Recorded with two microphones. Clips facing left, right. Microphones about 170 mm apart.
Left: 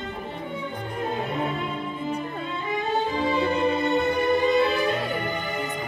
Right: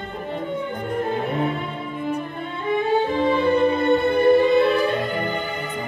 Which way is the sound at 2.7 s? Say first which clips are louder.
Right 7 dB; 55° right (ahead or behind).